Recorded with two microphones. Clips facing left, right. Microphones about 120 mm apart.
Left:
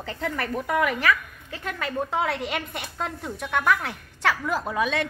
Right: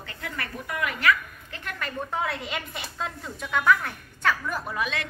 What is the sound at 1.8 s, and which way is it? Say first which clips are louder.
A woman's voice: left 4 dB; 75° left (ahead or behind).